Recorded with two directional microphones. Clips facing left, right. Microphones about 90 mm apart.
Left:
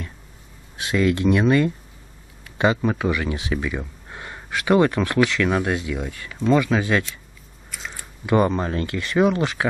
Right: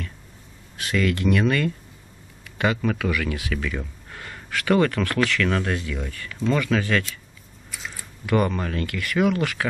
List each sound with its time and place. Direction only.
0.7 s speech: 20° left (ahead or behind)
8.3 s speech: 25° left (ahead or behind)